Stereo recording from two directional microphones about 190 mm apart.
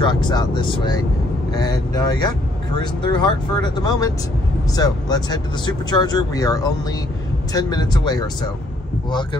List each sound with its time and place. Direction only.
0.0 s speech: 25° left (ahead or behind)